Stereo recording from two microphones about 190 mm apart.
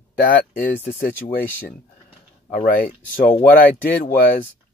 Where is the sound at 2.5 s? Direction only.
45° left (ahead or behind).